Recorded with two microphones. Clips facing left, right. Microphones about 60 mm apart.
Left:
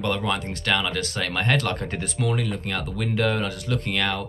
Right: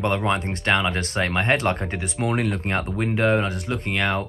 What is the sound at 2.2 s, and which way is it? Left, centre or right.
Speech, right.